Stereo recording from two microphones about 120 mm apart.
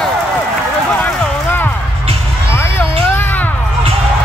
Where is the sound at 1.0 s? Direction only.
15° left (ahead or behind).